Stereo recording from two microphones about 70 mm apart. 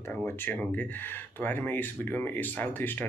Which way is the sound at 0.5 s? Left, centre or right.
Left.